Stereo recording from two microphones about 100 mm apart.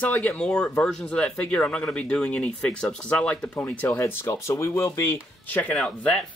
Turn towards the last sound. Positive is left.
turn(degrees=5)  # may be behind; listen again after turning